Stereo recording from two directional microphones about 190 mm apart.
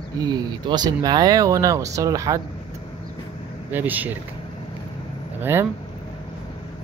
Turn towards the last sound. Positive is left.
turn(degrees=-10)  # may be behind; listen again after turning